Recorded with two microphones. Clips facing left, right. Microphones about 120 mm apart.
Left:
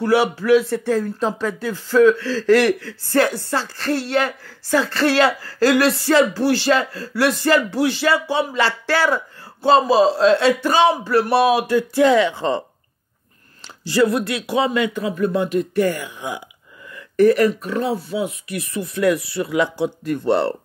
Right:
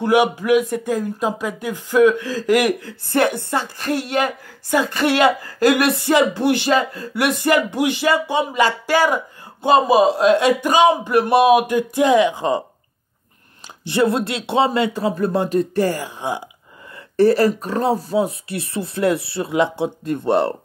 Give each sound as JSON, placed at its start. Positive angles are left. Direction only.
{"t": 0.0, "sound": "speech", "side_deg": -15}
{"t": 13.8, "sound": "speech", "side_deg": -25}